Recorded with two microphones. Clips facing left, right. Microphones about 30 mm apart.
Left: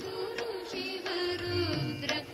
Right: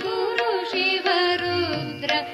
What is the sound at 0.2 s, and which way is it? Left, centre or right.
Music, right.